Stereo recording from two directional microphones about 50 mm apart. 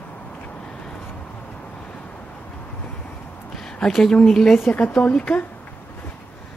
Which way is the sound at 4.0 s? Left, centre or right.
Centre.